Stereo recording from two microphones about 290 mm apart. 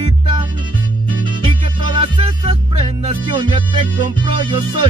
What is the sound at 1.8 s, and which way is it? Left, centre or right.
Music, centre.